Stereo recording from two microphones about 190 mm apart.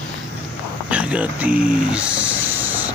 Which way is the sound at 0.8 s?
5° right (ahead or behind).